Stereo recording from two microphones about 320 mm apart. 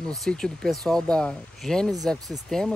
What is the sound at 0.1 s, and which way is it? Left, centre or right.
Speech, centre.